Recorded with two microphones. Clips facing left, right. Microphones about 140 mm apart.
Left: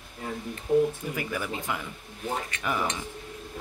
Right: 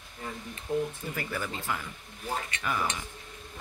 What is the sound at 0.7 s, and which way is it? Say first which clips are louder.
Speech: left 7 dB; 15° left (ahead or behind).